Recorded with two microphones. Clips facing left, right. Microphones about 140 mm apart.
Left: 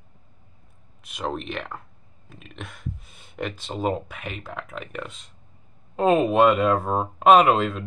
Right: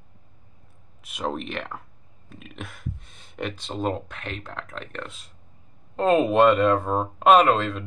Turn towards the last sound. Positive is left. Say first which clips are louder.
# left 1 dB
turn(degrees=10)  # may be behind; listen again after turning